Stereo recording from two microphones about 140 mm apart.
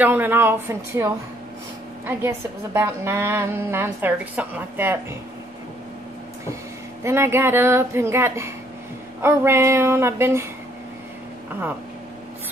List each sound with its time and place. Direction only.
0.0 s a woman's voice: 15° right (ahead or behind)
7.0 s a woman's voice: 20° right (ahead or behind)